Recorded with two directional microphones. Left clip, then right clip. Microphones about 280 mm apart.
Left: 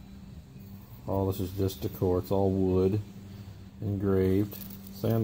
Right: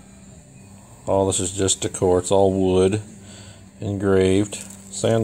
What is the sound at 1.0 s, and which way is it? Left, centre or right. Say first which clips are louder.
Speech: right 11 dB; right.